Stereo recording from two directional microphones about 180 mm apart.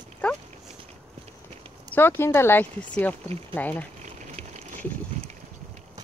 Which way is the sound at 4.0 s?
40° right (ahead or behind).